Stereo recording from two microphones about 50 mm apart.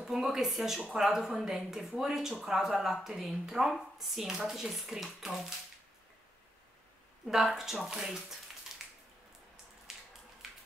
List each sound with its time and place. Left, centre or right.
0.0 s a woman's voice: centre
7.5 s a woman's voice: centre
8.8 s a sound: centre